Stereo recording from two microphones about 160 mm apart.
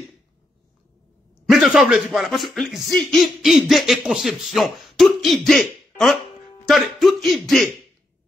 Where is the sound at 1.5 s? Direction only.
Centre (ahead or behind).